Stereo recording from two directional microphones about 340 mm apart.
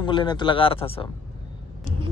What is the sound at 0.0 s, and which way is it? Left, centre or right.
Speech, centre.